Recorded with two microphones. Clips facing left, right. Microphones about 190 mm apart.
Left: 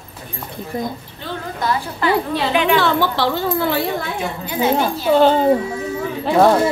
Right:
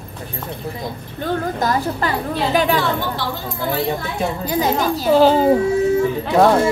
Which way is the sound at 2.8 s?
75° left (ahead or behind).